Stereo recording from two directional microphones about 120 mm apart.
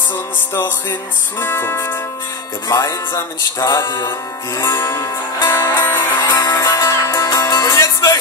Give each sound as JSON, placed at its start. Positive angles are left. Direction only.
{"t": 1.4, "sound": "music", "side_deg": 20}
{"t": 6.3, "sound": "music", "side_deg": 30}